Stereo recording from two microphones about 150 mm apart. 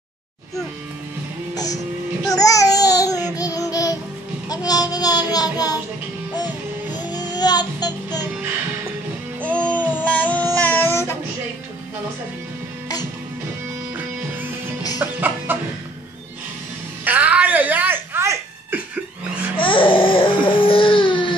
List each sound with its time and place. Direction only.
1.5 s music: 25° left (ahead or behind)
2.3 s babbling: 20° left (ahead or behind)
3.3 s a sound: 25° left (ahead or behind)
4.5 s child singing: 25° left (ahead or behind)
6.3 s music: 30° left (ahead or behind)
9.4 s music: 10° left (ahead or behind)
10.0 s a sound: 10° left (ahead or behind)
12.8 s music: 25° left (ahead or behind)
15.0 s chicken: 15° right (ahead or behind)
17.0 s a sound: 10° right (ahead or behind)
19.5 s baby cry: 35° left (ahead or behind)